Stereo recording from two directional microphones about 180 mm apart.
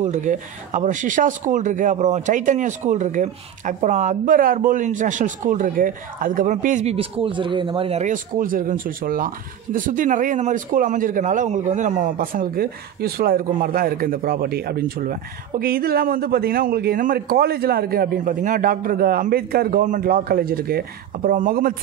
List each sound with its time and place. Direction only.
0.0 s speech: 45° right (ahead or behind)